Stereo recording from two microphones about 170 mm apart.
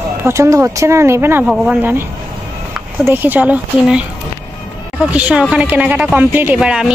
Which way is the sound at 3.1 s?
10° right (ahead or behind).